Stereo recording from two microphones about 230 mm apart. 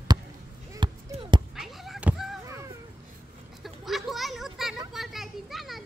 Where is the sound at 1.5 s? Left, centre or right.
Centre.